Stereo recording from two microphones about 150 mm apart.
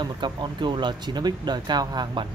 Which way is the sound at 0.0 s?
30° right (ahead or behind).